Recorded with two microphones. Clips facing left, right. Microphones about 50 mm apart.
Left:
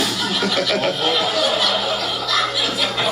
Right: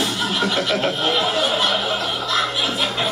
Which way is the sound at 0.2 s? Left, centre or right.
Right.